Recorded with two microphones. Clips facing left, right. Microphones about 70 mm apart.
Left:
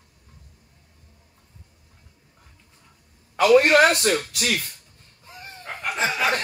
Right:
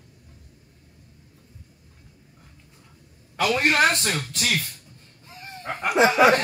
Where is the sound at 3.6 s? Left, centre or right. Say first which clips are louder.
Left 4 dB; centre.